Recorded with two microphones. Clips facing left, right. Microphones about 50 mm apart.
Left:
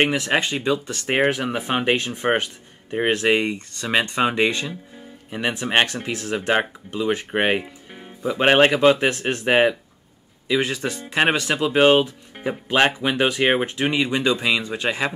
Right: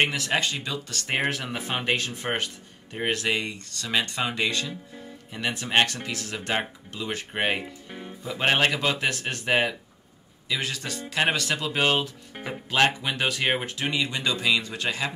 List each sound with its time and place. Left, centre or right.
0.0 s speech: left